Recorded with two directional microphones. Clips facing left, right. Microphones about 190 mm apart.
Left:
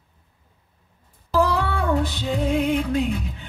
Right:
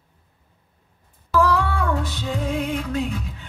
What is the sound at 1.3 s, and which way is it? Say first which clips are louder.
Music: right 1 dB; 20° left (ahead or behind).